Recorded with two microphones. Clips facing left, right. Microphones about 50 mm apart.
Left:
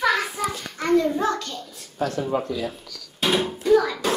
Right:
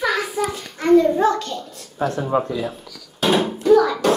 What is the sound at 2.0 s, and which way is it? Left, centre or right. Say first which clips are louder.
Speech: right 4 dB; right.